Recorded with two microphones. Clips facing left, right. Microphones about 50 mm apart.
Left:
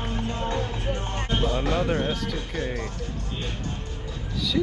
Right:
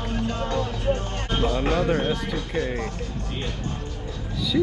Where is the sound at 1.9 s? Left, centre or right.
Right.